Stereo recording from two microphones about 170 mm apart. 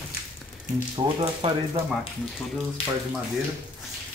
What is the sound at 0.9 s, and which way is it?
Speech, 30° right (ahead or behind).